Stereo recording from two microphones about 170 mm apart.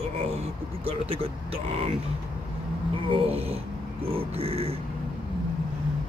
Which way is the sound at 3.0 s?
35° right (ahead or behind).